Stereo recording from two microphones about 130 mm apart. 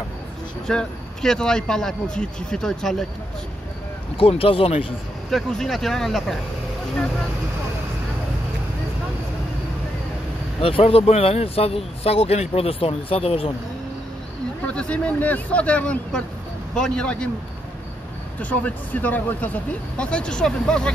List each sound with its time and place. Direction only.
0.7 s speech: 5° left (ahead or behind)
4.2 s speech: 45° left (ahead or behind)
5.3 s speech: centre (ahead or behind)
10.6 s speech: 45° left (ahead or behind)
14.7 s speech: 10° left (ahead or behind)
18.4 s speech: 10° left (ahead or behind)